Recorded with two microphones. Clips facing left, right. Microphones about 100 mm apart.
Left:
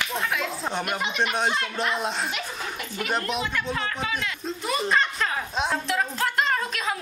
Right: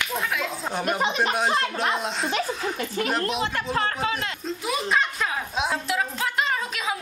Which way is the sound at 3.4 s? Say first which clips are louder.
Right 3 dB; 35° right (ahead or behind).